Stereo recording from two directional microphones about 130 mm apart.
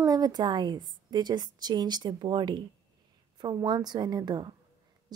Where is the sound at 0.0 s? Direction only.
30° right (ahead or behind).